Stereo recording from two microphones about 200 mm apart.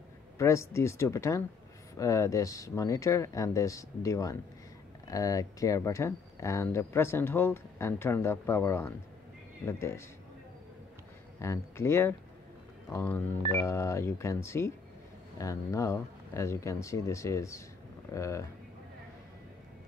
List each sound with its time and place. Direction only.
0.4 s speech: 15° left (ahead or behind)
11.4 s speech: 15° left (ahead or behind)